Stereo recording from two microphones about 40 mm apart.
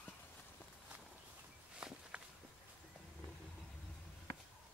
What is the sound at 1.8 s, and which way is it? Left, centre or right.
Walk, right.